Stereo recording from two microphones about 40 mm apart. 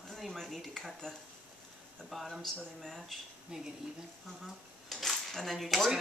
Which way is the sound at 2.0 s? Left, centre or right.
Centre.